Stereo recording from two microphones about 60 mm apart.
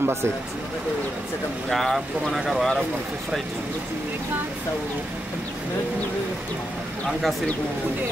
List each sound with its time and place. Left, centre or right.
0.0 s speech: right
1.7 s speech: centre
7.1 s speech: centre